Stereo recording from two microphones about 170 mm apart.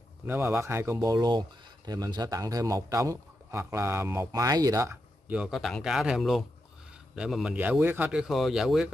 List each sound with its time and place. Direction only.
0.3 s a man's voice: 10° right (ahead or behind)
5.3 s a man's voice: 5° right (ahead or behind)